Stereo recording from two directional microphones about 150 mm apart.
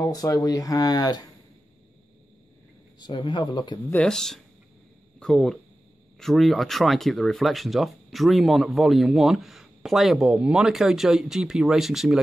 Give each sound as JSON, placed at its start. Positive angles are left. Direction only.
{"t": 0.0, "sound": "speech", "side_deg": 20}
{"t": 3.0, "sound": "speech", "side_deg": 30}
{"t": 3.9, "sound": "speech", "side_deg": 5}